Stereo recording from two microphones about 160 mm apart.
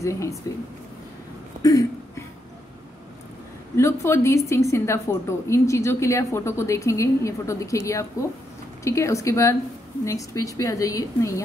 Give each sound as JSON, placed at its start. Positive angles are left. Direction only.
{"t": 0.0, "sound": "a woman's voice", "side_deg": 20}
{"t": 1.6, "sound": "a sound", "side_deg": 20}
{"t": 3.7, "sound": "a woman's voice", "side_deg": 15}